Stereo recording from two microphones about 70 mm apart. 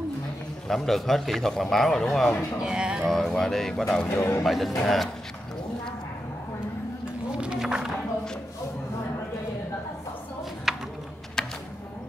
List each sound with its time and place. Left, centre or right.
0.7 s a man's voice: centre
2.6 s speech: centre
3.1 s a man's voice: centre
4.1 s speech: left
4.5 s a man's voice: centre
7.3 s a sound: centre
10.7 s clip-clop: centre
11.4 s music: centre